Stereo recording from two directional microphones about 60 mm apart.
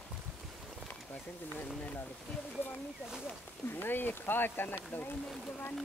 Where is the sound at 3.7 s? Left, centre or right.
Left.